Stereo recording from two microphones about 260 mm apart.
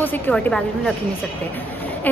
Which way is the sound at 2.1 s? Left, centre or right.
Centre.